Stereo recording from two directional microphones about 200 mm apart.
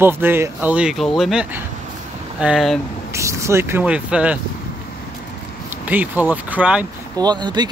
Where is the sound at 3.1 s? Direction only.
15° right (ahead or behind).